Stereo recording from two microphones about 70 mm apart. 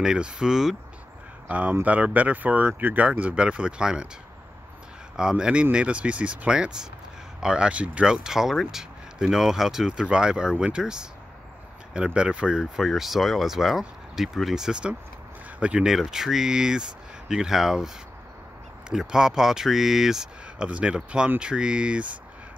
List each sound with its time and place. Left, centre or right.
0.0 s speech: centre
1.5 s speech: right
5.1 s speech: centre
20.6 s speech: centre